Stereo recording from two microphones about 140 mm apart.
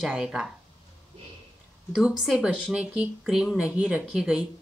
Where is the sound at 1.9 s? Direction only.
5° right (ahead or behind).